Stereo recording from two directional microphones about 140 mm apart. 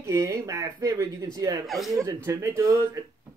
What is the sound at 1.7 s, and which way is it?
Speech, centre (ahead or behind).